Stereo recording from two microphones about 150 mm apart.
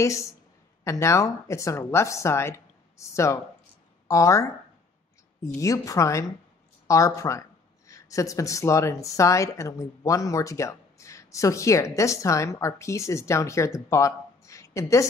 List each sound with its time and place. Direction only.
0.0 s speech: 20° left (ahead or behind)
5.6 s speech: 20° left (ahead or behind)